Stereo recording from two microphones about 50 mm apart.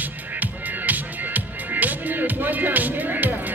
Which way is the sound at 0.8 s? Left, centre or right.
Right.